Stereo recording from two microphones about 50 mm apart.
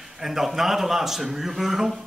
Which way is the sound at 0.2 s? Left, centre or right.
Centre.